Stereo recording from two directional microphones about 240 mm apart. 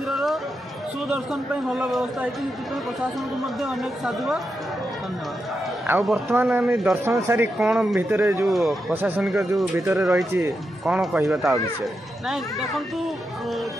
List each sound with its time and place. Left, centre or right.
0.1 s a sound: centre
1.0 s a man's voice: centre
3.4 s a man's voice: centre
5.9 s a man's voice: centre